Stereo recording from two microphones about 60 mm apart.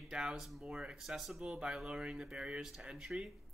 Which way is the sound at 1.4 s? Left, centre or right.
Centre.